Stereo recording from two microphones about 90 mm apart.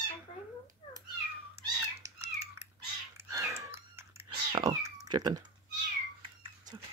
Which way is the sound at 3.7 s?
25° right (ahead or behind).